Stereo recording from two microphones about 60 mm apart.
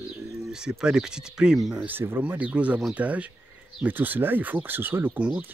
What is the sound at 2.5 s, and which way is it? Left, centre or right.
Speech, right.